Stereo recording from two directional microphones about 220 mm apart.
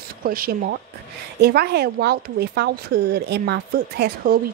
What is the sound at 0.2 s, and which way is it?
A woman's voice, 40° right (ahead or behind).